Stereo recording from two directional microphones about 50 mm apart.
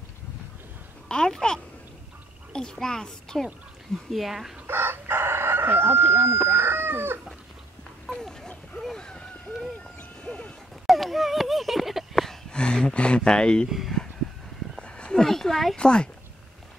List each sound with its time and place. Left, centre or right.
1.0 s a child's voice: centre
4.1 s speech: centre
4.6 s chicken: right
6.1 s speech: right
8.1 s a sound: centre
9.9 s music: left
10.9 s a sound: centre
12.4 s speech: centre
13.7 s speech: centre
14.8 s a sound: centre
15.2 s a child's voice: centre